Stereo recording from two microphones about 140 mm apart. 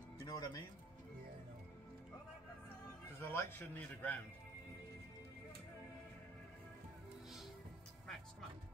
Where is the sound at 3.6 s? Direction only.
15° left (ahead or behind).